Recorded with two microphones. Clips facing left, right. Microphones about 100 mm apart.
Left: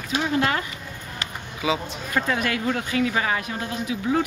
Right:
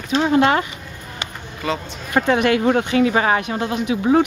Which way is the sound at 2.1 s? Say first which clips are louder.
Right 8 dB; 65° right (ahead or behind).